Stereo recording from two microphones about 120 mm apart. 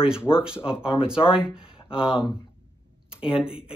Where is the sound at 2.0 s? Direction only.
5° right (ahead or behind).